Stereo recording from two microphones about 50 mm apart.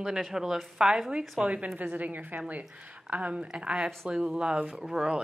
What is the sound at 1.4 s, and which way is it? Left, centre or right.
Speech, right.